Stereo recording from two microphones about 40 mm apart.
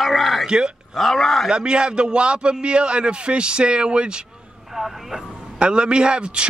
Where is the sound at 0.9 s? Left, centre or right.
Centre.